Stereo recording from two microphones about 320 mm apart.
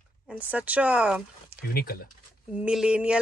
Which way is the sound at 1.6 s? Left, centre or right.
Left.